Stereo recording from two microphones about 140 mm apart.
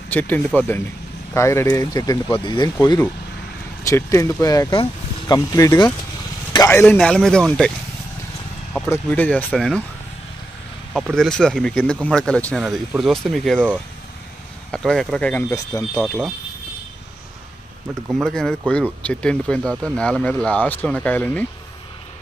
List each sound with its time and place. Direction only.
0.1 s speech: 10° left (ahead or behind)
7.0 s speech: 5° left (ahead or behind)
8.9 s speech: 10° left (ahead or behind)
10.9 s speech: centre (ahead or behind)
14.7 s speech: centre (ahead or behind)
15.5 s speech: 20° left (ahead or behind)
18.1 s speech: centre (ahead or behind)